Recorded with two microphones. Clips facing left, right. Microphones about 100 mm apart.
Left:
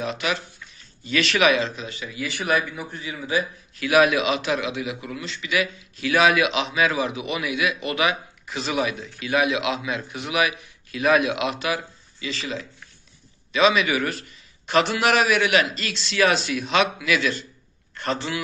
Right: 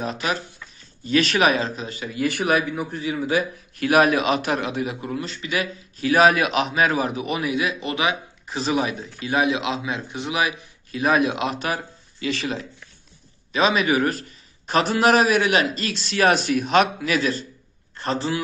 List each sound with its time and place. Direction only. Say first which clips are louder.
0.0 s a man's voice: right 1 dB; 40° right (ahead or behind)
13.5 s a man's voice: even; 40° right (ahead or behind)